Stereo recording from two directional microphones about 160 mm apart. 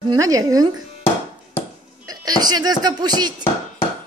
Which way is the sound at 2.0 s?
25° right (ahead or behind).